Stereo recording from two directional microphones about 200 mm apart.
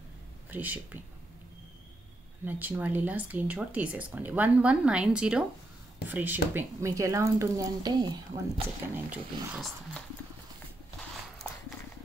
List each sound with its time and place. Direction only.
0.5 s speech: 10° right (ahead or behind)
2.4 s speech: 10° right (ahead or behind); by 8.6 s 25° right (ahead or behind)
8.8 s speech: 10° right (ahead or behind)